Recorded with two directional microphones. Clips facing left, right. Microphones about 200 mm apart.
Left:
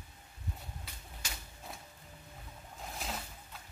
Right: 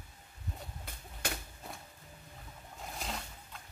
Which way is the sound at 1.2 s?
60° right (ahead or behind).